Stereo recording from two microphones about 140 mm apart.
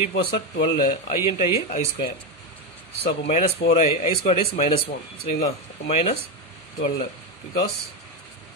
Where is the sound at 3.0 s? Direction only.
45° left (ahead or behind).